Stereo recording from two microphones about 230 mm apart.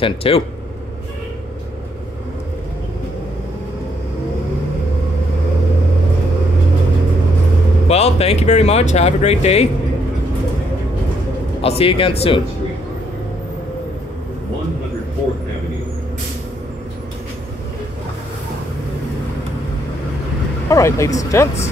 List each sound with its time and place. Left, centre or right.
0.0 s speech: left
7.9 s speech: left
11.6 s speech: left
20.6 s speech: centre